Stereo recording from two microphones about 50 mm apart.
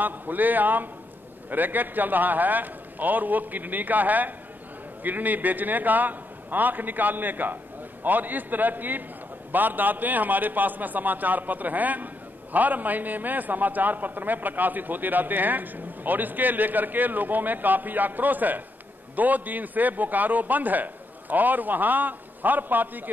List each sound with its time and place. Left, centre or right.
0.0 s a man's voice: right